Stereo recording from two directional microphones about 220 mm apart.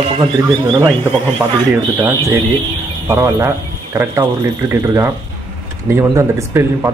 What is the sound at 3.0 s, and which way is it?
A man's voice, 15° right (ahead or behind).